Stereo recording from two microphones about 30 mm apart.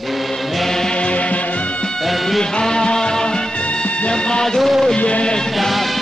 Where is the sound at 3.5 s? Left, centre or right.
Left.